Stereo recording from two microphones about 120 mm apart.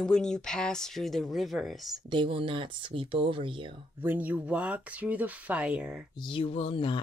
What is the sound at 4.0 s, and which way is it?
Speech, 15° right (ahead or behind).